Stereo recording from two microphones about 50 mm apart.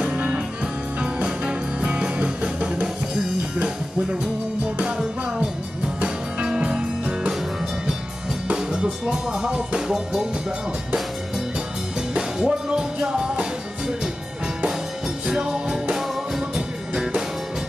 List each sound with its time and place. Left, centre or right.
0.0 s music: right
5.9 s music: centre
8.5 s music: centre
12.1 s music: centre
15.2 s music: centre